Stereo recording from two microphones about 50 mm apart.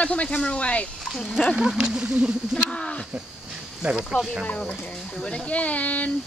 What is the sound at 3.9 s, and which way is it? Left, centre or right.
Speech, centre.